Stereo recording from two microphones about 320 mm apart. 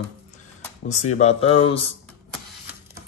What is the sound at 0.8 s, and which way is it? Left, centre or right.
Speech, left.